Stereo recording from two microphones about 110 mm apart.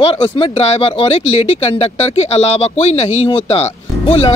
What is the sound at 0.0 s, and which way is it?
Speech, 55° left (ahead or behind).